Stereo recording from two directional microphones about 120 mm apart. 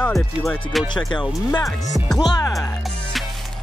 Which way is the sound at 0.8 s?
40° left (ahead or behind).